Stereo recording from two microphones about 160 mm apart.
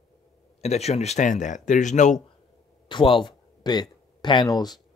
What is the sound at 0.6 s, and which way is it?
Speech, 40° left (ahead or behind).